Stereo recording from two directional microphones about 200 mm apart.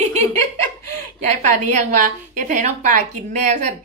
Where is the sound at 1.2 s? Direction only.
35° right (ahead or behind).